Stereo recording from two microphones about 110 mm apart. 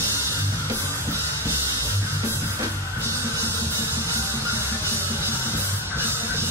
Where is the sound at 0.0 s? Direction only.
30° right (ahead or behind).